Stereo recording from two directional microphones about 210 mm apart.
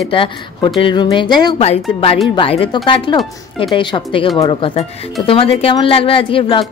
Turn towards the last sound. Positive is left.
turn(degrees=25)  # may be behind; listen again after turning